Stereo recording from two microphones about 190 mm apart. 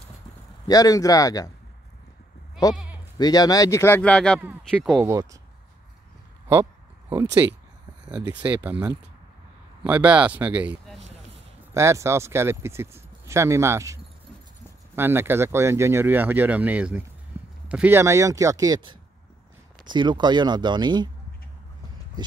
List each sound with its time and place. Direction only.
0.7 s speech: 20° left (ahead or behind)
2.7 s speech: 5° right (ahead or behind)
3.2 s speech: 20° left (ahead or behind); by 5.0 s centre (ahead or behind)
5.0 s speech: 15° right (ahead or behind)
6.5 s a sound: 15° right (ahead or behind)
8.2 s speech: 10° right (ahead or behind)
9.8 s speech: 5° right (ahead or behind)
15.0 s speech: 10° right (ahead or behind)
17.3 s a sound: 10° right (ahead or behind)
17.6 s speech: 10° right (ahead or behind)